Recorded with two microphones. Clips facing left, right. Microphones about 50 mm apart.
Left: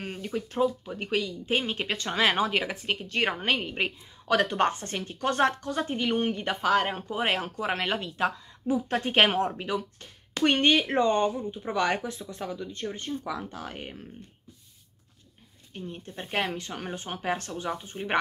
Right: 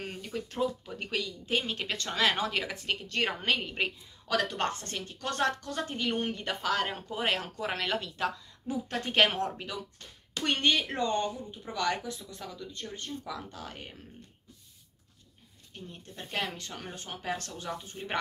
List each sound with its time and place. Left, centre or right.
0.0 s a sound: centre
0.6 s speech: centre
4.3 s a woman's voice: left
15.7 s a woman's voice: left